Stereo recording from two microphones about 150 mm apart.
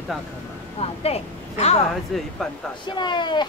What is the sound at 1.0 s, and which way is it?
Speech, 45° left (ahead or behind).